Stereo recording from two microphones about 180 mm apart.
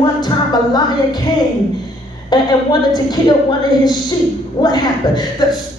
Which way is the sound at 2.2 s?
25° left (ahead or behind).